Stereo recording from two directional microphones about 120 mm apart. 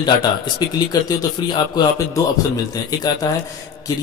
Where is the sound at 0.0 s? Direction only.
35° left (ahead or behind).